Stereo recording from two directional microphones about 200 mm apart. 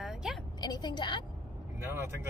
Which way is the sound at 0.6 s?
20° left (ahead or behind).